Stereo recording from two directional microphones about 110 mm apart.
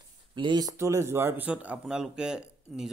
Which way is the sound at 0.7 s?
25° right (ahead or behind).